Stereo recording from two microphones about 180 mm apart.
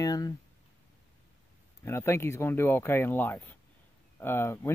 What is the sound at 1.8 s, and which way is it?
Speech, 15° left (ahead or behind).